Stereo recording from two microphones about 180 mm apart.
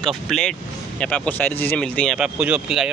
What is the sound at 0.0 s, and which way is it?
Speech, centre (ahead or behind).